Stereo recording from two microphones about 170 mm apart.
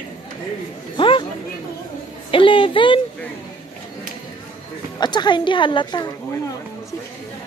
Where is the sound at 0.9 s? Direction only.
30° left (ahead or behind).